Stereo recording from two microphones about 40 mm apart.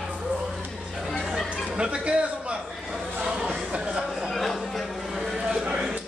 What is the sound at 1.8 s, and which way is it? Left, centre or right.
Music, right.